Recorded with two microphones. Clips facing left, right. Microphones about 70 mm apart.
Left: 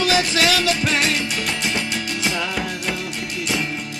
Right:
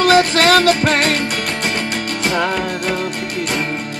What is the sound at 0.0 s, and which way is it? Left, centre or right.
Music, right.